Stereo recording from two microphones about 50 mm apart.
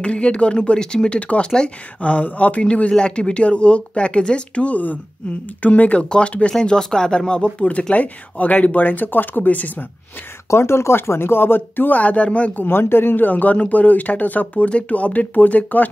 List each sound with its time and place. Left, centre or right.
0.0 s speech: left
7.5 s speech: left
10.5 s speech: left
12.0 s speech: left
12.5 s speech: left